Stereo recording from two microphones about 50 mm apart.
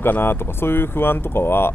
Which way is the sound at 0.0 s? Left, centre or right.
Left.